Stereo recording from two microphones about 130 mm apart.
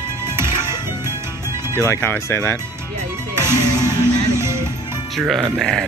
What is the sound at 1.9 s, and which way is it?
Speech, 15° left (ahead or behind).